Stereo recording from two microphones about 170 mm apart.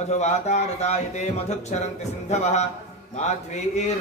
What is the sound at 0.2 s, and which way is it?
A man's voice, 40° left (ahead or behind).